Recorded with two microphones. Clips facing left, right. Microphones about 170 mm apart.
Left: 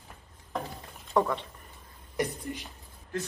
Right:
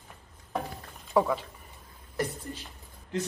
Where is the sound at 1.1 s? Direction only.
5° right (ahead or behind).